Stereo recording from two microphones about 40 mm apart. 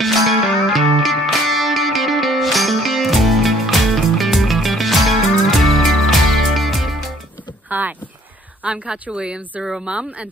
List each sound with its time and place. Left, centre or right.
0.7 s music: centre
7.7 s a sound: right
8.6 s a woman's voice: right